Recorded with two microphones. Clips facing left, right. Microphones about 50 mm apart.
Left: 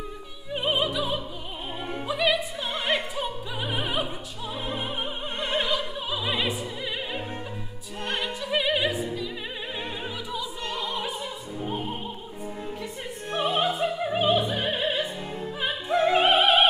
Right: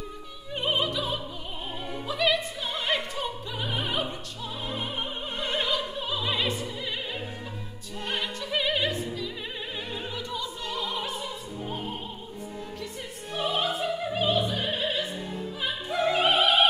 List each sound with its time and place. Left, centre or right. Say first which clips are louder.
0.5 s music: left 2 dB; centre
2.0 s opera: left 1 dB; centre
5.4 s music: left 2 dB; centre
8.1 s opera: left 2 dB; centre
10.3 s opera: left 2 dB; centre
13.3 s music: left 3 dB; left
15.6 s opera: left 4 dB; left